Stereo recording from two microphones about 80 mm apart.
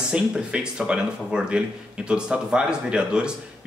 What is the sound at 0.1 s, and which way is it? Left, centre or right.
Speech, centre.